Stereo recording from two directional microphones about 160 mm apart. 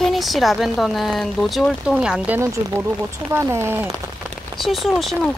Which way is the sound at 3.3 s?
15° right (ahead or behind).